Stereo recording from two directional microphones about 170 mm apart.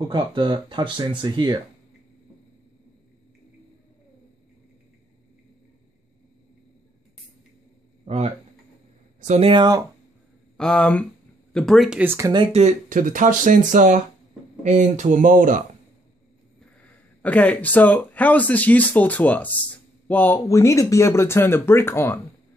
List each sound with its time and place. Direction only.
0.1 s speech: 30° right (ahead or behind)
8.0 s a sound: 40° right (ahead or behind)
9.2 s speech: 45° right (ahead or behind)
9.5 s speech: 25° right (ahead or behind)
10.6 s speech: 5° left (ahead or behind)
12.0 s speech: 10° right (ahead or behind)
12.5 s speech: 45° right (ahead or behind)
16.8 s speech: 10° left (ahead or behind)